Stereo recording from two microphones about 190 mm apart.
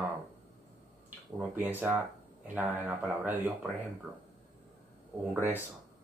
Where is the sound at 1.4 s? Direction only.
10° right (ahead or behind).